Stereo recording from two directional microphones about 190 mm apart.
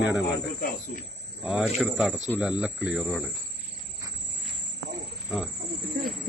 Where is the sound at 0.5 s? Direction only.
55° left (ahead or behind).